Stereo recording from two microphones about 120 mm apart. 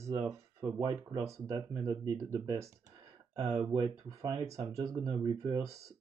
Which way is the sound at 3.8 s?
35° right (ahead or behind).